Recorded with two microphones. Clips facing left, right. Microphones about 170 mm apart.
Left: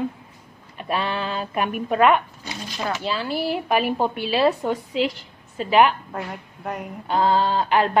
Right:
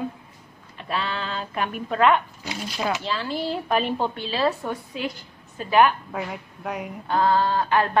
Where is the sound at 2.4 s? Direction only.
10° right (ahead or behind).